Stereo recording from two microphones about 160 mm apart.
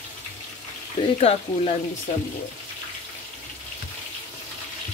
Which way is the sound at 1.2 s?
40° left (ahead or behind).